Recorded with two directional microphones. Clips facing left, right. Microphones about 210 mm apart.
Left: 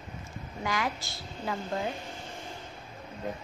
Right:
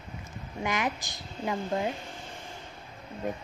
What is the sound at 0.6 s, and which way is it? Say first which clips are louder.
A woman's voice: right 2 dB; 20° right (ahead or behind).